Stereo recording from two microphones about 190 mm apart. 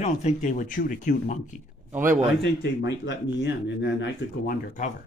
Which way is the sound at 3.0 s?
65° left (ahead or behind).